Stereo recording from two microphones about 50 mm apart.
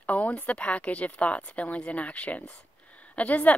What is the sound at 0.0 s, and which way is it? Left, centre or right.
Speech, left.